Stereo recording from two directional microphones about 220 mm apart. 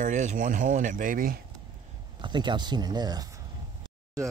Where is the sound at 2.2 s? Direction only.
20° right (ahead or behind).